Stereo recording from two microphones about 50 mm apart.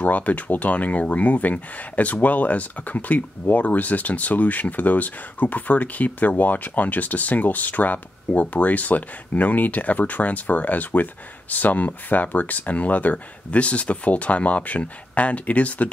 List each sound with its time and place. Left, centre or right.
0.0 s speech: left